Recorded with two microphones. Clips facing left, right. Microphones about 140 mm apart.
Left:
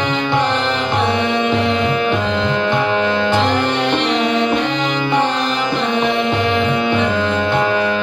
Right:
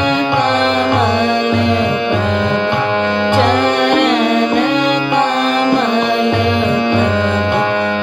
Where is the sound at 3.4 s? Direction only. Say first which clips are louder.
Right 4 dB; 65° right (ahead or behind).